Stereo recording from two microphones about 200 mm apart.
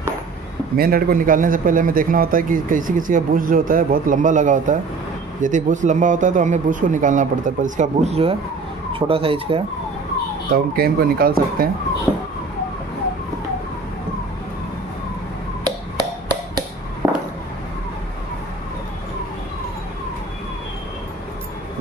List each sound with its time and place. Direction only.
0.7 s a man's voice: 50° right (ahead or behind); by 9.6 s 25° right (ahead or behind)
10.5 s a man's voice: 50° right (ahead or behind)
17.0 s a sound: 10° right (ahead or behind)